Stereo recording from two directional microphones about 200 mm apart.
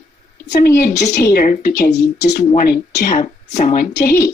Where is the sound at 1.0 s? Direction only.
55° left (ahead or behind).